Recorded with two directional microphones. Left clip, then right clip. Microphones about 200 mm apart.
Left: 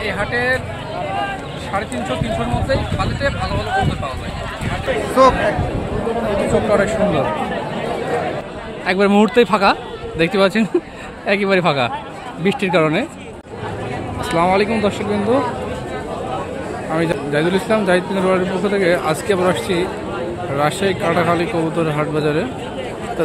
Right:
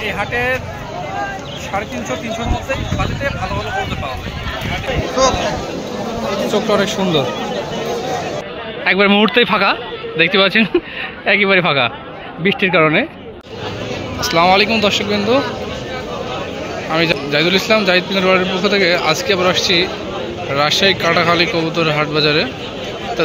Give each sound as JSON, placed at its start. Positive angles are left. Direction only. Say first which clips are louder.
{"t": 0.2, "sound": "speech", "louder": "even", "side_deg": -10}
{"t": 6.7, "sound": "speech", "louder": "even", "side_deg": -30}
{"t": 8.8, "sound": "a man's voice", "louder": "right 2 dB", "side_deg": 5}
{"t": 14.3, "sound": "a man's voice", "louder": "right 4 dB", "side_deg": 5}
{"t": 16.9, "sound": "a man's voice", "louder": "right 3 dB", "side_deg": 5}